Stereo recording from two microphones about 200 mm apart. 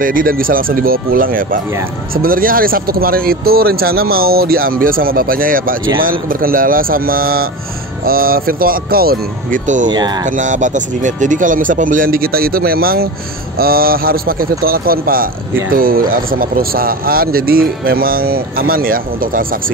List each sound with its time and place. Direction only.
0.0 s speech: 45° right (ahead or behind)
9.8 s speech: 20° right (ahead or behind)
10.2 s speech: 40° right (ahead or behind)